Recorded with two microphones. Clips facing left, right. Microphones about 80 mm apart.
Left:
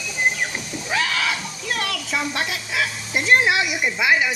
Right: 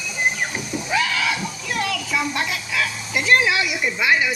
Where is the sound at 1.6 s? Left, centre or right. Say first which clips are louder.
Right 1 dB; left.